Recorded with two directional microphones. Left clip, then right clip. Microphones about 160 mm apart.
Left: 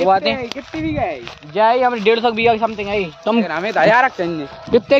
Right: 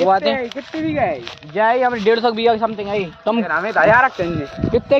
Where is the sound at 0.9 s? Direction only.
15° left (ahead or behind).